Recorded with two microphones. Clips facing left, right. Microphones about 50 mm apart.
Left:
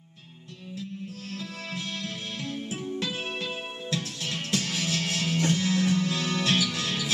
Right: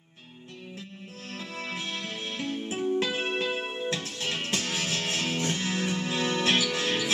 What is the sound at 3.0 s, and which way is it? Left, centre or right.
Music, right.